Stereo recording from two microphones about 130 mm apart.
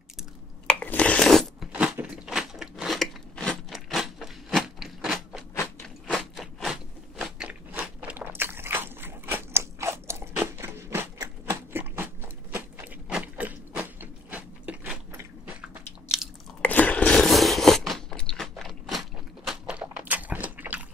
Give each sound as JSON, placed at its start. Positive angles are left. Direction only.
{"t": 0.7, "sound": "a sound", "side_deg": 10}
{"t": 1.7, "sound": "biting", "side_deg": -10}
{"t": 6.0, "sound": "crunch", "side_deg": 0}
{"t": 14.3, "sound": "biting", "side_deg": -10}
{"t": 16.6, "sound": "crunch", "side_deg": 10}
{"t": 19.8, "sound": "a sound", "side_deg": -10}